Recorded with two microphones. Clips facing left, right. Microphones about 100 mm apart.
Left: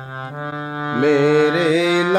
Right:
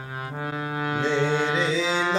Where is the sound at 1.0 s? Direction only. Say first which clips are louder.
Left 11 dB; 65° left (ahead or behind).